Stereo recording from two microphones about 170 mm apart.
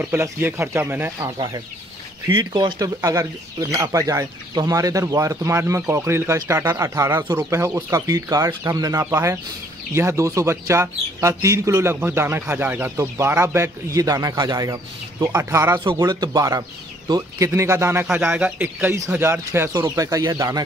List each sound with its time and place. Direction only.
0.0 s speech: 15° right (ahead or behind)
2.2 s speech: 25° right (ahead or behind)